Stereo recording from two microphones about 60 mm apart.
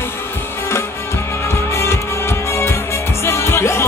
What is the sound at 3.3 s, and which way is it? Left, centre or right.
Music, left.